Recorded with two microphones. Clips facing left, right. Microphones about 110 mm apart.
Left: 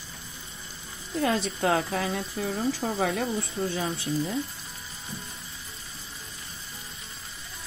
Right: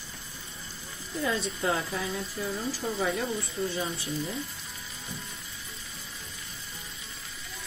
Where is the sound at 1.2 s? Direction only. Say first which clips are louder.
Left 4 dB; 90° left.